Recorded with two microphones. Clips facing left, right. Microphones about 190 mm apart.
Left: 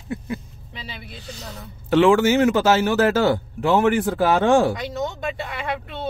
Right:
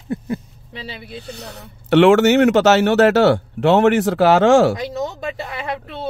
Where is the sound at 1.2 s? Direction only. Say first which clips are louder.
Right 3 dB; 65° right (ahead or behind); by 4.7 s 90° right.